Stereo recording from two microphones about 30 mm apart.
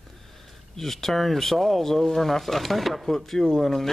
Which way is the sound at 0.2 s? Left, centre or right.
Centre.